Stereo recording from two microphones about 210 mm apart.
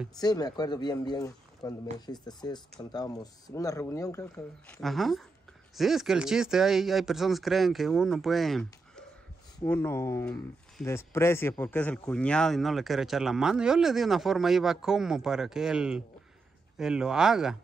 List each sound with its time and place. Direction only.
0.1 s speech: 20° left (ahead or behind); by 9.0 s centre (ahead or behind)
9.6 s speech: 10° left (ahead or behind)